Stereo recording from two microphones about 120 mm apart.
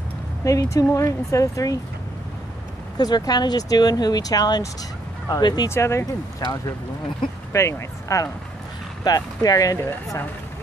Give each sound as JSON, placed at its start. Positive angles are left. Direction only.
{"t": 0.4, "sound": "speech", "side_deg": 25}
{"t": 3.0, "sound": "speech", "side_deg": 35}
{"t": 5.7, "sound": "speech", "side_deg": 20}
{"t": 6.4, "sound": "speech", "side_deg": 35}